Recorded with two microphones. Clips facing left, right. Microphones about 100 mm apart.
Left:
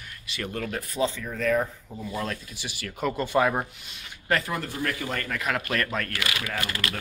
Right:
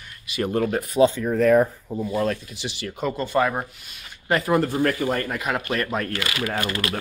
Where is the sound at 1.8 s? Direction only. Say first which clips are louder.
Right 8 dB; 25° right (ahead or behind).